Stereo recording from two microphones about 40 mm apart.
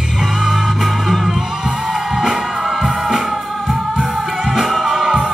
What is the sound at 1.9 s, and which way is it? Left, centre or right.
Music, centre.